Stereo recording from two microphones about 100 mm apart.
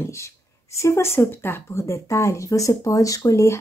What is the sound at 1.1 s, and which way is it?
Speech, 20° left (ahead or behind).